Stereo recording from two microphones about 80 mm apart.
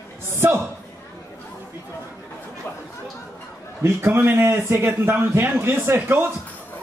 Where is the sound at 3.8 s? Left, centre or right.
Right.